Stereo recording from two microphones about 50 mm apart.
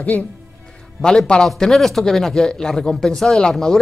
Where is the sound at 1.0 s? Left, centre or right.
Centre.